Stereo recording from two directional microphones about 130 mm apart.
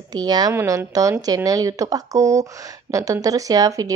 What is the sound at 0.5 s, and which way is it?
Speech, 20° right (ahead or behind).